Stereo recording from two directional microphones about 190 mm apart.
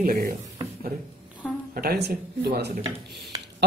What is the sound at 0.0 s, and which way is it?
Speech, 50° right (ahead or behind).